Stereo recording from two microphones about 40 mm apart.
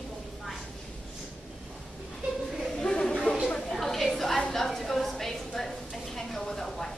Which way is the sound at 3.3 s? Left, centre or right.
Left.